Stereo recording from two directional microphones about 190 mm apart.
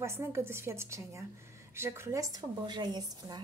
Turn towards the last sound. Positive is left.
turn(degrees=-20)  # may be behind; listen again after turning